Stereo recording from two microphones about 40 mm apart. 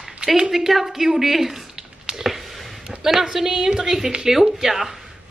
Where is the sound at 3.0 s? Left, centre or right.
Centre.